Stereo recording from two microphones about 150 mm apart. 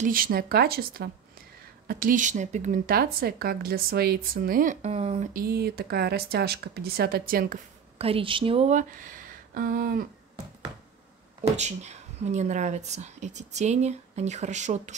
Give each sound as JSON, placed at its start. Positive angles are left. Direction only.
{"t": 0.0, "sound": "speech", "side_deg": -75}
{"t": 1.9, "sound": "speech", "side_deg": -65}
{"t": 2.9, "sound": "speech", "side_deg": -85}
{"t": 4.8, "sound": "speech", "side_deg": -45}
{"t": 5.3, "sound": "speech", "side_deg": -90}
{"t": 8.0, "sound": "speech", "side_deg": -40}
{"t": 8.7, "sound": "speech", "side_deg": -65}
{"t": 11.5, "sound": "speech", "side_deg": -50}